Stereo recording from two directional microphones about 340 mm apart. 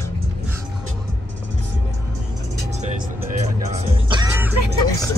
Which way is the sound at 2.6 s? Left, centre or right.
Centre.